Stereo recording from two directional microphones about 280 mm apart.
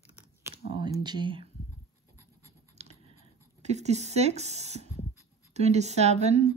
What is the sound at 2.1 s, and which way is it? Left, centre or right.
Scratch, centre.